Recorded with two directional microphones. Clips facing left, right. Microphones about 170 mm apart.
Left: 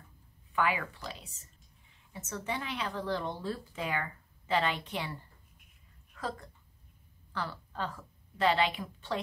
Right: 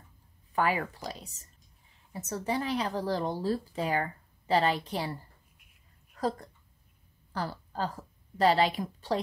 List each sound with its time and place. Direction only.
0.5 s a woman's voice: 40° right (ahead or behind)